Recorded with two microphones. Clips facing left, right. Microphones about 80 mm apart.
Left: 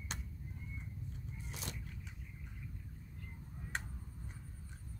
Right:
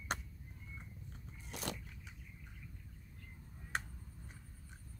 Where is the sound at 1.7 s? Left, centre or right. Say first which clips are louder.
Right 7 dB; right.